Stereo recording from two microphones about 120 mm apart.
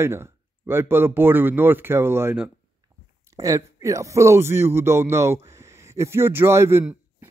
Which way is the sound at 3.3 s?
25° right (ahead or behind).